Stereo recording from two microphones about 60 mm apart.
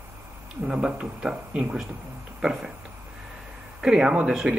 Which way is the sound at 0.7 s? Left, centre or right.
Centre.